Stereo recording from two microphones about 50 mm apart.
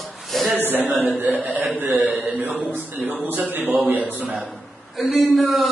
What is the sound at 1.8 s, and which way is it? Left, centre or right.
Speech, right.